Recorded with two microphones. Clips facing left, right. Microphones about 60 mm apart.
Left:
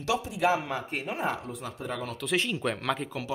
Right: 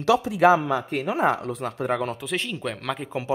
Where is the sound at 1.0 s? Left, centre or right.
Right.